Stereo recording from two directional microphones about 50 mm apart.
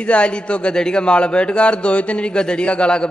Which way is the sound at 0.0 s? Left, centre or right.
Left.